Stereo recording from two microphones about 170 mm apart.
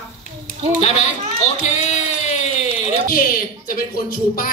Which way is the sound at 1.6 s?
45° left (ahead or behind).